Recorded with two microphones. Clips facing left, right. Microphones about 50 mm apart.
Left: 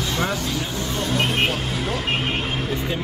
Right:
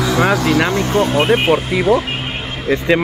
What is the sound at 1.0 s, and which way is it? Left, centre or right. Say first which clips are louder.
Speech: right 9 dB; right.